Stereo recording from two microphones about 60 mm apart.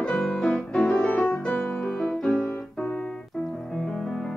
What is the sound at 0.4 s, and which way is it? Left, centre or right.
Music, centre.